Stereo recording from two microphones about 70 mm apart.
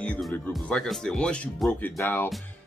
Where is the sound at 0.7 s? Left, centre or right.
Centre.